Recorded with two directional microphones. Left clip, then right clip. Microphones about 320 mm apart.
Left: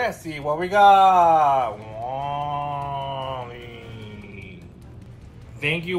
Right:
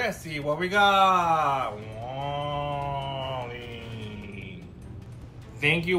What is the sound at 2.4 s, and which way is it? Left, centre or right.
Mantra, right.